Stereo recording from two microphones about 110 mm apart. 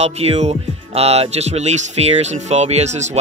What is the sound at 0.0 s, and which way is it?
Speech, 70° right (ahead or behind).